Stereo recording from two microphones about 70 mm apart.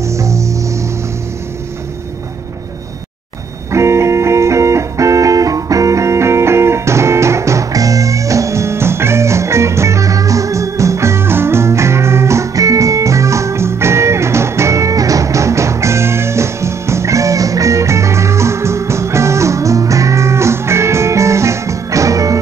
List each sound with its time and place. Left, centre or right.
0.0 s music: right
3.7 s music: right